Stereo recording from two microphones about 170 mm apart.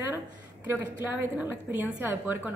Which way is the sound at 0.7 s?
15° right (ahead or behind).